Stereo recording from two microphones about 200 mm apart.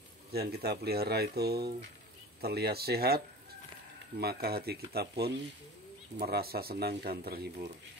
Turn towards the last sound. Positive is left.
turn(degrees=-50)  # may be behind; listen again after turning